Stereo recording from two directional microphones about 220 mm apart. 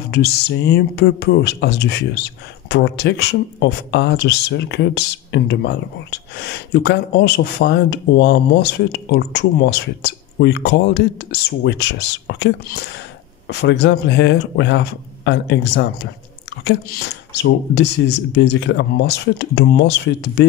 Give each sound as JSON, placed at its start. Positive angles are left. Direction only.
{"t": 0.1, "sound": "speech", "side_deg": 50}